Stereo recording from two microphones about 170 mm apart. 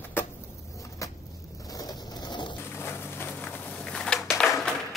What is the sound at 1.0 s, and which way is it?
Vehicle, 20° left (ahead or behind).